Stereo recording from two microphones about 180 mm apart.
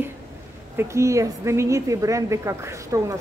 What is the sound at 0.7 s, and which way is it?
A woman's voice, 15° right (ahead or behind).